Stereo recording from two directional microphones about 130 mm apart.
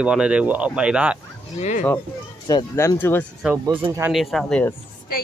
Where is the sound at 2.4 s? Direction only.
30° left (ahead or behind).